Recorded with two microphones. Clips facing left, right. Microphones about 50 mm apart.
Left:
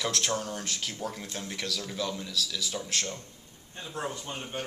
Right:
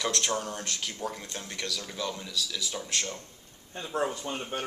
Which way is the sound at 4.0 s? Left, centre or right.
Centre.